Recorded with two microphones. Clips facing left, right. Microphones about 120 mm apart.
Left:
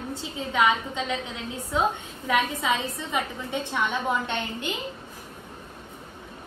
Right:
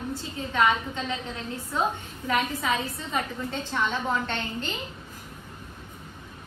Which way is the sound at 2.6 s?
15° left (ahead or behind).